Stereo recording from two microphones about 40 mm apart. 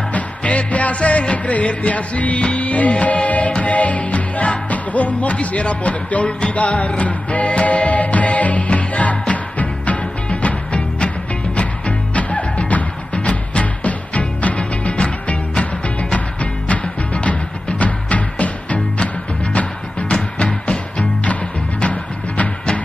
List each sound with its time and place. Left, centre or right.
0.1 s music: left
16.3 s music: left